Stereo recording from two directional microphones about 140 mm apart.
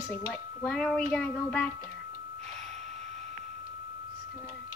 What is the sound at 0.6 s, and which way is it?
A woman's voice, 5° left (ahead or behind).